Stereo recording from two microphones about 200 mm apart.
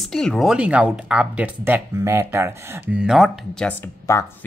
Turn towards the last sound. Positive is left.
turn(degrees=10)  # may be behind; listen again after turning